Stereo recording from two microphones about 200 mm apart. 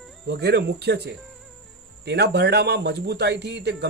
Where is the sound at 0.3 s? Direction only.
55° right (ahead or behind).